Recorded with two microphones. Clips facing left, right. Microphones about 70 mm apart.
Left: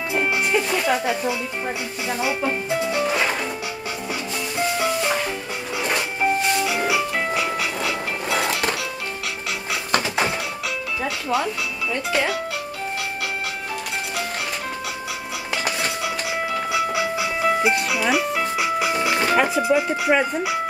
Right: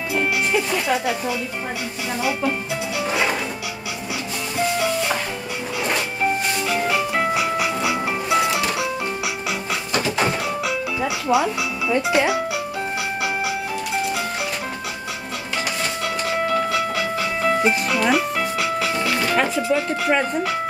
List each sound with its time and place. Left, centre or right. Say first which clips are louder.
0.2 s music: even; centre
2.1 s speech: right 1 dB; left
3.0 s music: right 3 dB; centre
6.6 s music: even; centre; by 8.8 s right
11.0 s speech: right 4 dB; centre
16.3 s music: right 6 dB; centre
18.6 s music: left 2 dB; centre
19.3 s speech: left 2 dB; centre